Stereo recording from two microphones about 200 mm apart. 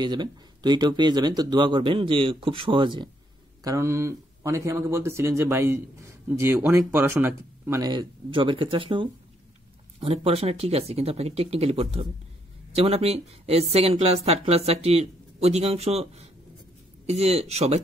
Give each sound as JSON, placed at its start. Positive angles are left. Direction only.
{"t": 0.0, "sound": "speech", "side_deg": -20}